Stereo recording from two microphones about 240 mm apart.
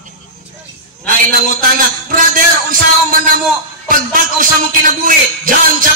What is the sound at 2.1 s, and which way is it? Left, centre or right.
Music, right.